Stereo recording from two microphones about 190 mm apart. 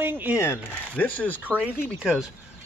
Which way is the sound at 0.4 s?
10° left (ahead or behind).